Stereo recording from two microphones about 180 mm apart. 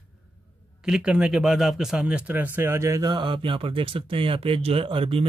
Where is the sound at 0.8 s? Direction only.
5° right (ahead or behind).